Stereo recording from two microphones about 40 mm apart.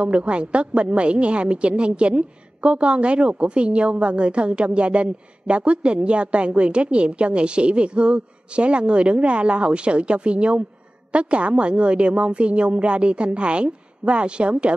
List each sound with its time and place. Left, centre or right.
0.0 s a woman's voice: right